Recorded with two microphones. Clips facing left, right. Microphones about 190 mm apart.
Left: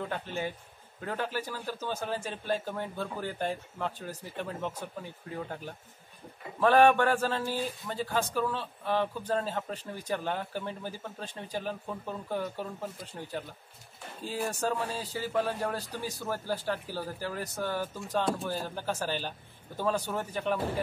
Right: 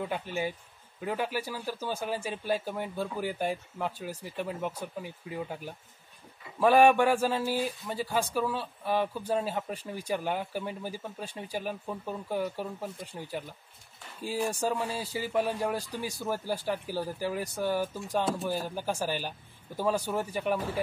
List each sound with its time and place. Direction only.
0.1 s speech: 10° right (ahead or behind)
14.5 s speech: 10° right (ahead or behind)